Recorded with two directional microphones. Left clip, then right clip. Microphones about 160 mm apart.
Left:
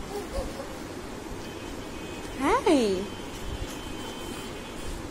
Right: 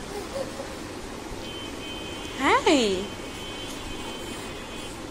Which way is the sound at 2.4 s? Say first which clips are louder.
Right 2 dB; 10° left (ahead or behind).